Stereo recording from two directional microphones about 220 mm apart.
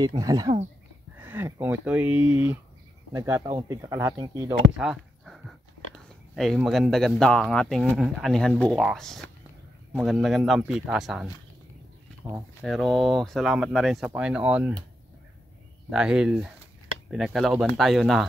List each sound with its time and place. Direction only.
0.0 s speech: 15° right (ahead or behind)
4.7 s a sound: centre (ahead or behind)
6.0 s speech: centre (ahead or behind)
12.6 s speech: centre (ahead or behind)
15.9 s speech: 5° right (ahead or behind)